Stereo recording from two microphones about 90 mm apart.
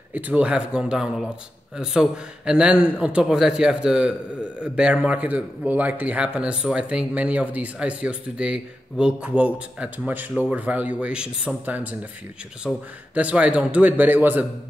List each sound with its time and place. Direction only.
0.1 s a man's voice: 15° right (ahead or behind)